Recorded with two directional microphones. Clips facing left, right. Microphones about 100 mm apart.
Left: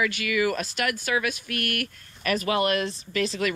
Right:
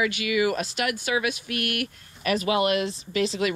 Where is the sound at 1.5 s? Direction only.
40° left (ahead or behind).